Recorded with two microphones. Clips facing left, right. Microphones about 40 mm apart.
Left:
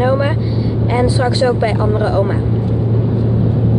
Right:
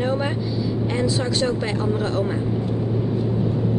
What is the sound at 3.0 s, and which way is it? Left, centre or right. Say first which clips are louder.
Vehicle: left 5 dB; left.